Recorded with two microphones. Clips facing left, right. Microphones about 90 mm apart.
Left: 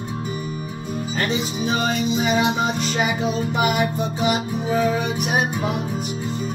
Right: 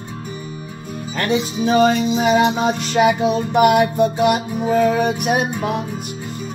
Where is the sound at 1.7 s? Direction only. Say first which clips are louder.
Right 8 dB; 70° right (ahead or behind).